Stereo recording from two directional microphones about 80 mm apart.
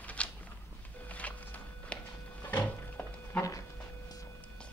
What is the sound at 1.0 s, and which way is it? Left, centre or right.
Walk, centre.